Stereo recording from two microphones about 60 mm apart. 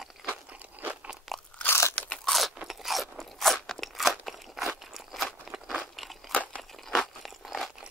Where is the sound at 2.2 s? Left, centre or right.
Centre.